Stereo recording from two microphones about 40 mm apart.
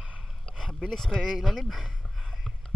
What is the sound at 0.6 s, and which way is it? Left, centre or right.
Speech, centre.